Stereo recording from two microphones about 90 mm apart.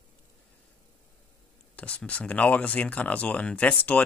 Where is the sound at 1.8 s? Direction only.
15° left (ahead or behind).